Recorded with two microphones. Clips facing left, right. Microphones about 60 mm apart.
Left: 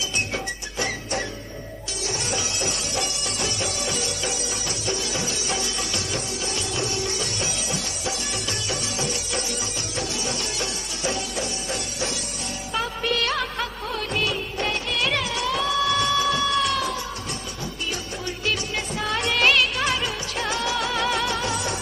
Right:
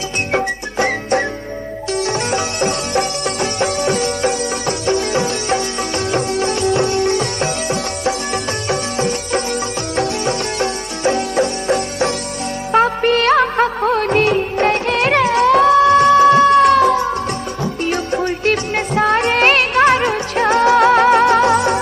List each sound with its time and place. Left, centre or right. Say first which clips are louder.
0.3 s music: right 12 dB; right
12.7 s music of bollywood: right 12 dB; right
15.8 s music: right 13 dB; right